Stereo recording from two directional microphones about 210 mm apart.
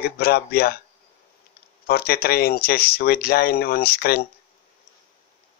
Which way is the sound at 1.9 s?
50° left (ahead or behind).